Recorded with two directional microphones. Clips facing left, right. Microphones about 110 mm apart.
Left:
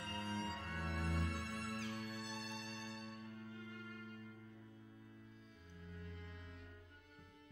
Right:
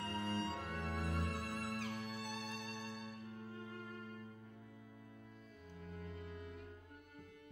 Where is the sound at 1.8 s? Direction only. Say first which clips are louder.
Right 2 dB; 55° right (ahead or behind).